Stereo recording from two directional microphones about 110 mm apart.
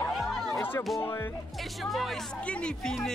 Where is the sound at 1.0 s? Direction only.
20° left (ahead or behind).